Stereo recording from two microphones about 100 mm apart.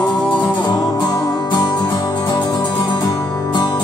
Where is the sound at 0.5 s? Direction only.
45° left (ahead or behind).